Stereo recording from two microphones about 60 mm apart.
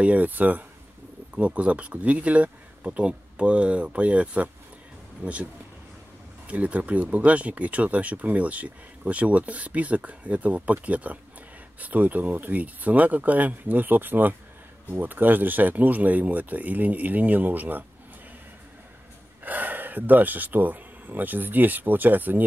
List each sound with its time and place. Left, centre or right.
0.0 s speech: right
19.4 s speech: right